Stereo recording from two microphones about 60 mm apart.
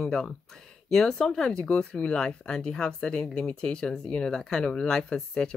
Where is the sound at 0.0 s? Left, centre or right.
Centre.